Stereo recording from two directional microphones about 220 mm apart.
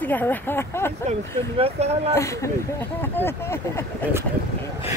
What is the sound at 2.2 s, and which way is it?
Speech, 15° left (ahead or behind).